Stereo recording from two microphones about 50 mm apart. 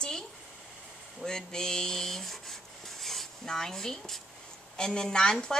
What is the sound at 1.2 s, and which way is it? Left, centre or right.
Rub, centre.